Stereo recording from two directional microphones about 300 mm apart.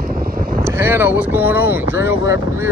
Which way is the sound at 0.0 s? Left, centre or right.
Right.